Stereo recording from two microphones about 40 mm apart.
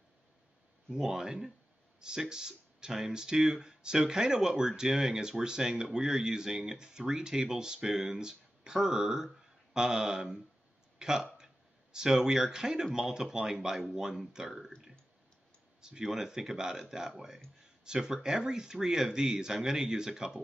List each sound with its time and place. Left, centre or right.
0.9 s speech: centre
15.8 s speech: centre
17.8 s speech: centre